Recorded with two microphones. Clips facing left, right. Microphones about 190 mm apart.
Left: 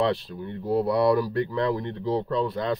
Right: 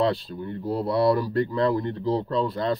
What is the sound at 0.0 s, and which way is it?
Speech, 30° right (ahead or behind).